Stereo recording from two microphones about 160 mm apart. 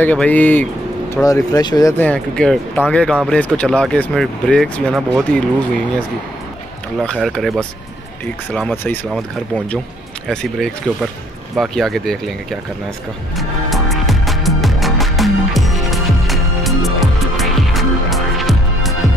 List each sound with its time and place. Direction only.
0.0 s speech: 10° left (ahead or behind)
1.1 s speech: 20° left (ahead or behind)
2.0 s speech: 5° left (ahead or behind)
7.0 s speech: 5° left (ahead or behind)
10.2 s speech: 5° left (ahead or behind)
13.4 s music: centre (ahead or behind)